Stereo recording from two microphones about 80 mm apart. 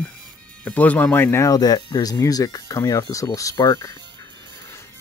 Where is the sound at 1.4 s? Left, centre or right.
Left.